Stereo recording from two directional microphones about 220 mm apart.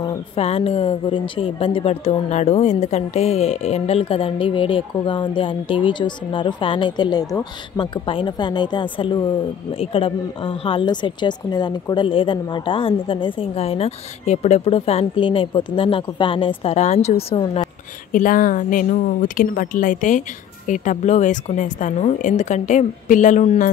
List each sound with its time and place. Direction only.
0.4 s speech: 25° left (ahead or behind)
18.1 s speech: 40° left (ahead or behind)